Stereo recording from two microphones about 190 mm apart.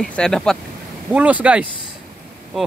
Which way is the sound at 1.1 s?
5° right (ahead or behind).